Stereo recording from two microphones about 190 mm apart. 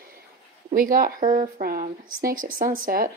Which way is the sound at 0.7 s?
45° right (ahead or behind).